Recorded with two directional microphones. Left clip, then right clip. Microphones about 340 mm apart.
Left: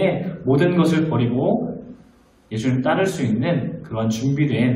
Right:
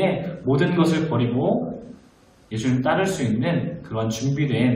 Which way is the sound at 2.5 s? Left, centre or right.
Centre.